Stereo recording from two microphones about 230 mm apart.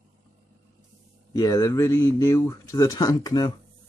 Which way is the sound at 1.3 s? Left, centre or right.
Centre.